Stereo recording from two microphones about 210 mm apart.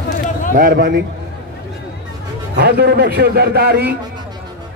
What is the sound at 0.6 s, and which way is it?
Speech, 45° right (ahead or behind).